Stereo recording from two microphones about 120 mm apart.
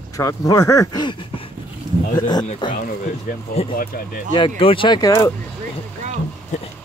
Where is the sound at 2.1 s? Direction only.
35° left (ahead or behind).